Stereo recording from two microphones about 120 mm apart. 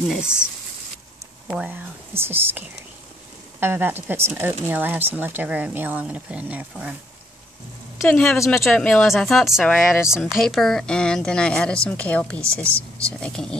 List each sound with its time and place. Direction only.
0.1 s speech: 5° right (ahead or behind)
1.5 s speech: 10° right (ahead or behind)
8.1 s a woman's voice: 10° left (ahead or behind)